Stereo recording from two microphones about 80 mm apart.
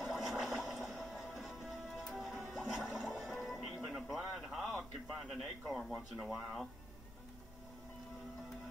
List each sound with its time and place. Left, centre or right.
0.0 s music: centre